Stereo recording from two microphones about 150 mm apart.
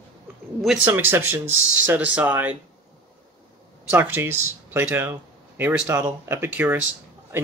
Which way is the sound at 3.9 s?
15° right (ahead or behind).